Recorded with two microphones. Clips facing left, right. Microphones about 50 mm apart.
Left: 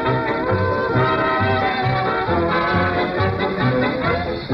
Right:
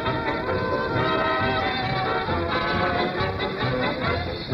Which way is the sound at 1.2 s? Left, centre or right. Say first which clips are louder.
Left 5 dB; left.